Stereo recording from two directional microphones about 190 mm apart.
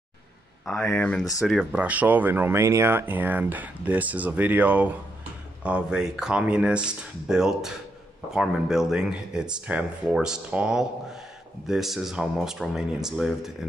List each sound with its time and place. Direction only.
0.7 s speech: 10° left (ahead or behind)